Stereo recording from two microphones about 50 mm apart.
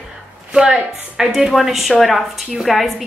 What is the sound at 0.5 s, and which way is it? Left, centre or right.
Speech, centre.